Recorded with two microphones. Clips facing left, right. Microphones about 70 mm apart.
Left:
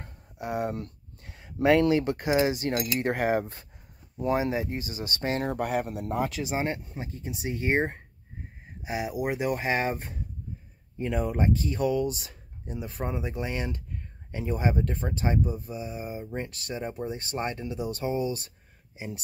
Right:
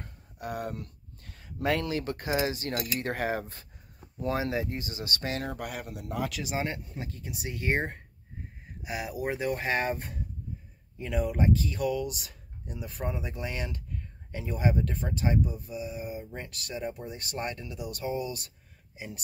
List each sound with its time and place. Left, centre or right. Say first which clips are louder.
0.0 s a sound: left 3 dB; left
1.2 s speech: left 6 dB; left
11.0 s speech: left 2 dB; left